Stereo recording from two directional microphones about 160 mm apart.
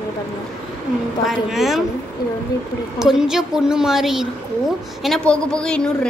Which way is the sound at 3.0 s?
5° right (ahead or behind).